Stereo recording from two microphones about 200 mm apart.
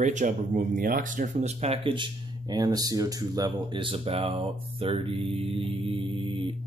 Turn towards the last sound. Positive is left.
turn(degrees=-25)  # may be behind; listen again after turning